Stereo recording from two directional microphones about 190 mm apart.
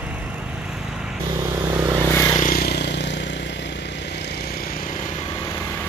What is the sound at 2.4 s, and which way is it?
Vehicle, 50° left (ahead or behind).